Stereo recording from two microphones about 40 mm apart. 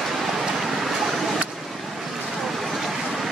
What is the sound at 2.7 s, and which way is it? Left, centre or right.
Vehicle, centre.